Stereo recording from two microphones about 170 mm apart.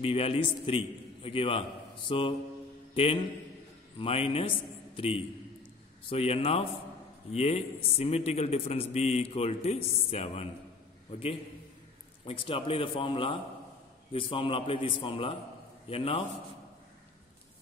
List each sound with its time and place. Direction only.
0.0 s a man's voice: 35° left (ahead or behind)
2.9 s music: 35° left (ahead or behind)
4.0 s a man's voice: 35° left (ahead or behind)